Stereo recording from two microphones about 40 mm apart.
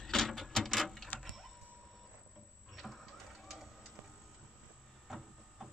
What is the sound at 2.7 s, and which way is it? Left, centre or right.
Printer, centre.